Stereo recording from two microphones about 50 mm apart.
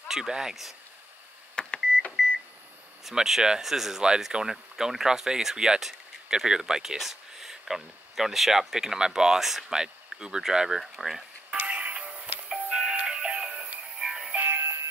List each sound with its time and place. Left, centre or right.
0.1 s speech: centre
1.5 s microwave oven: centre
3.1 s speech: centre
11.5 s music: right
14.0 s music: centre
14.3 s music: right